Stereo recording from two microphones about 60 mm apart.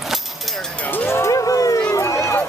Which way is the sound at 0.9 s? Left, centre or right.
Left.